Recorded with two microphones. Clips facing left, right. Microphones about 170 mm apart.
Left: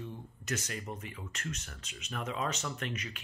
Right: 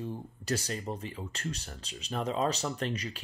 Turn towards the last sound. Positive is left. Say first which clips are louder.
# right 5 dB
turn(degrees=-35)  # may be behind; listen again after turning